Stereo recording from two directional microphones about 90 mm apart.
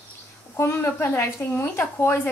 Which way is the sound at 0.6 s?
25° left (ahead or behind).